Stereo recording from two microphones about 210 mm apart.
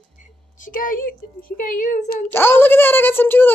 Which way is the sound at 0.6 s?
40° left (ahead or behind).